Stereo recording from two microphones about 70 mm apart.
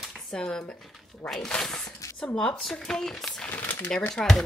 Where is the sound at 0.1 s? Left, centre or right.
Centre.